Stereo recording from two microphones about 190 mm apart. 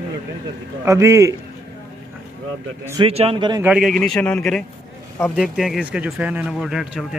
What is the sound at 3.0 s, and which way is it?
Speech, 30° right (ahead or behind).